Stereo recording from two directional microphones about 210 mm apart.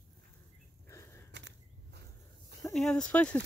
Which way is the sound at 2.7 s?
5° left (ahead or behind).